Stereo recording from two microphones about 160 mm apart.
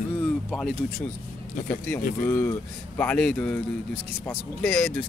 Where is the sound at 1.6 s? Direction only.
10° left (ahead or behind).